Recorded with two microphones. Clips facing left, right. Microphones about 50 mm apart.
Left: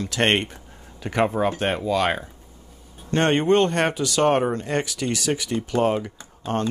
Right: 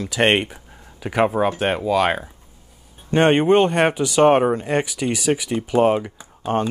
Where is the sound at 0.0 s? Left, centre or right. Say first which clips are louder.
Right 3 dB; centre.